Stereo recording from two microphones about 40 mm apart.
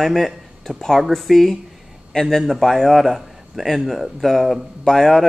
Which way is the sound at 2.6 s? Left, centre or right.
Centre.